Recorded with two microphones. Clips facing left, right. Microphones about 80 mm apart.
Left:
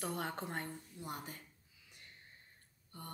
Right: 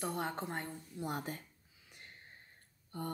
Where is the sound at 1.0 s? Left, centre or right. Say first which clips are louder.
Right 7 dB; right.